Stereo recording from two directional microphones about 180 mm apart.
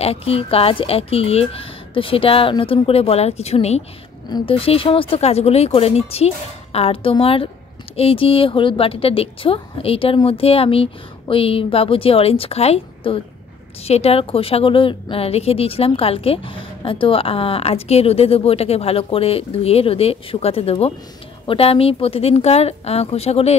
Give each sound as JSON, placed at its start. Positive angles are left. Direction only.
{"t": 0.0, "sound": "a woman's voice", "side_deg": 35}